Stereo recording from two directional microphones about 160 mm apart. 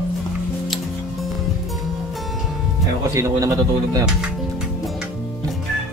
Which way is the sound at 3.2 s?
20° right (ahead or behind).